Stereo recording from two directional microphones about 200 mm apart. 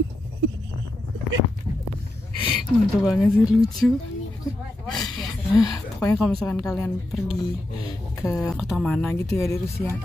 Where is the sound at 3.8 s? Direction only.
5° left (ahead or behind).